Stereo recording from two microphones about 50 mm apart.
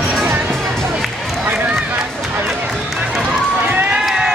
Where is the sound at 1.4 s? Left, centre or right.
Right.